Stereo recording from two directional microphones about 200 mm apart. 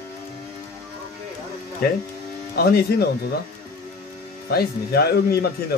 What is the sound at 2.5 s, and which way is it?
Speech, 50° left (ahead or behind).